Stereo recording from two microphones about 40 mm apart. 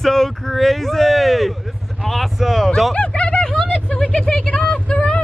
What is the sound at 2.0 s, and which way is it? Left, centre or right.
Speech, centre.